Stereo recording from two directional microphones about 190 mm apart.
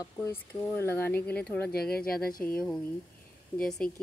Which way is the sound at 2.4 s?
5° left (ahead or behind).